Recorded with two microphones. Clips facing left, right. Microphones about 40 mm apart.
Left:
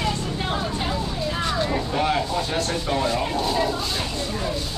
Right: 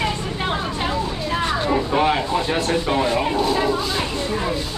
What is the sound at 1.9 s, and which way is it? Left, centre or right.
Speech, right.